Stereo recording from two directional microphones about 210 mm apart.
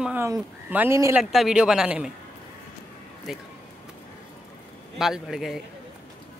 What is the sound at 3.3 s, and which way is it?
Speech, centre (ahead or behind).